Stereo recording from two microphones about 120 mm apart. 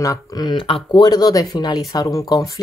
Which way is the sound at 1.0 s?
30° left (ahead or behind).